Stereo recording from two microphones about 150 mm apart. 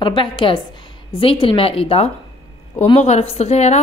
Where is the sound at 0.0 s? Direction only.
35° left (ahead or behind).